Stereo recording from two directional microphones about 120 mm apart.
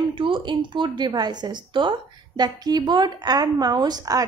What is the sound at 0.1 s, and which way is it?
A woman's voice, 45° right (ahead or behind).